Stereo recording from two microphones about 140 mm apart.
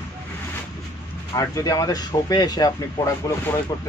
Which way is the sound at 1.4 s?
25° left (ahead or behind).